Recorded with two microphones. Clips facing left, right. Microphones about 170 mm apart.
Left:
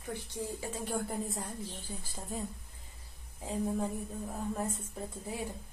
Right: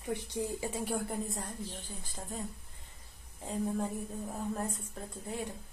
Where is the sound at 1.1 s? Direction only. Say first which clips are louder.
Even; centre (ahead or behind).